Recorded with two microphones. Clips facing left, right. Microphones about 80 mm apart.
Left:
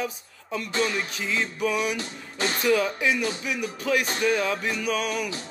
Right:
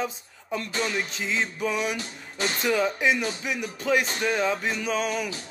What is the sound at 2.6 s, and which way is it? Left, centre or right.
Music, right.